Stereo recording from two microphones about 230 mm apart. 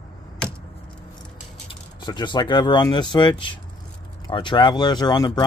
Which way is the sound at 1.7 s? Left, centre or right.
Centre.